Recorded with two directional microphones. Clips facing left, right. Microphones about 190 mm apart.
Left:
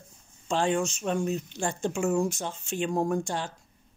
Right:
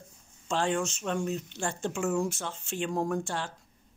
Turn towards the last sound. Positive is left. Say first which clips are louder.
# left 3 dB
turn(degrees=15)  # may be behind; listen again after turning